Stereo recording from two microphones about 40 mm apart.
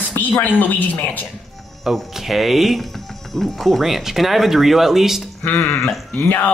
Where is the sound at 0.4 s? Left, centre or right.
Left.